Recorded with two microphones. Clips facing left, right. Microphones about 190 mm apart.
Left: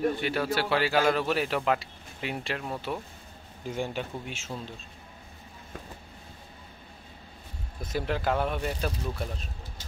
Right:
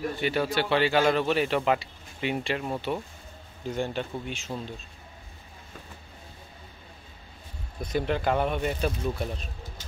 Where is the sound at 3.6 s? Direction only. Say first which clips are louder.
Right 2 dB; 10° left (ahead or behind).